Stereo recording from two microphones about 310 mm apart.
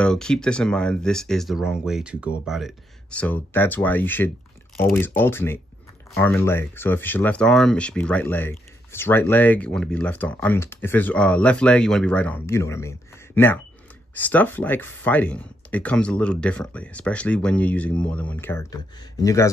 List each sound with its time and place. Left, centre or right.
0.0 s speech: centre